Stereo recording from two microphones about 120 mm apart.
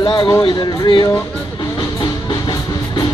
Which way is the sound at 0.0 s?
40° left (ahead or behind).